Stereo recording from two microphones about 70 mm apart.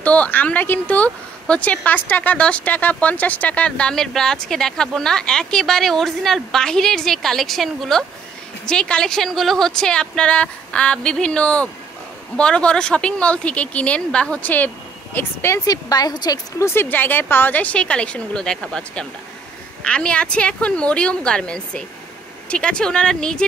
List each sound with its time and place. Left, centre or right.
0.0 s speech: left; by 8.0 s centre
8.6 s speech: centre
15.1 s speech: left
15.6 s a woman's voice: left
16.5 s speech: left
16.9 s speech: left; by 23.4 s centre